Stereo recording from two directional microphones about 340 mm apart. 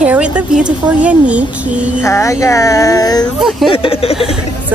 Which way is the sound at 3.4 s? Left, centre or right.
Centre.